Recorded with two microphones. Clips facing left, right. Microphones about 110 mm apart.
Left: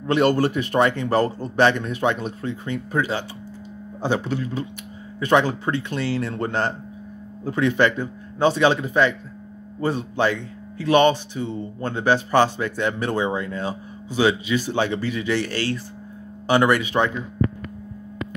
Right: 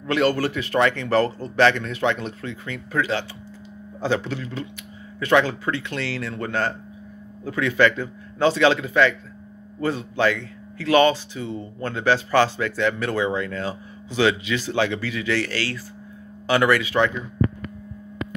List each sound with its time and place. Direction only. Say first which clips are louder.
0.0 s speech: left 2 dB; 25° left (ahead or behind)